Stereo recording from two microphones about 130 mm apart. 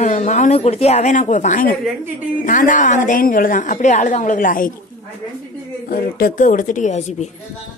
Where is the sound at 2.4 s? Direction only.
90° left.